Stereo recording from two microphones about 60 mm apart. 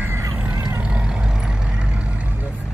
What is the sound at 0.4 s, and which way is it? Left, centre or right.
Vehicle, right.